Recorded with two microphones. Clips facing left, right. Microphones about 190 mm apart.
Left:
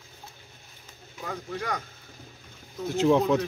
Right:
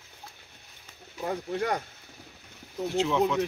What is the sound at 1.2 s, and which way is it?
Speech, 30° right (ahead or behind).